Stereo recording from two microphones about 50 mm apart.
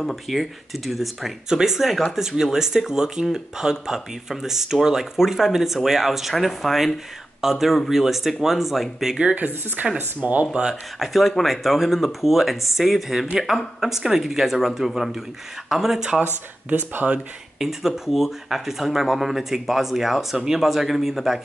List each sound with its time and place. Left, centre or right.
0.0 s speech: centre
9.3 s speech: right
10.4 s speech: centre
11.0 s speech: centre
16.6 s speech: right
17.6 s speech: centre